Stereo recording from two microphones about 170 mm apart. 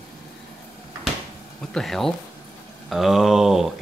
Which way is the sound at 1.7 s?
Centre (ahead or behind).